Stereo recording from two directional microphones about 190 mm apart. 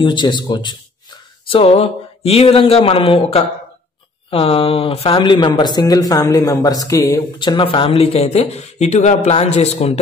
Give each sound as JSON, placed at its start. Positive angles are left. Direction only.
{"t": 0.0, "sound": "speech", "side_deg": 25}